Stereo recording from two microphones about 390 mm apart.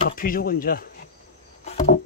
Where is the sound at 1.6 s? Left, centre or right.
Centre.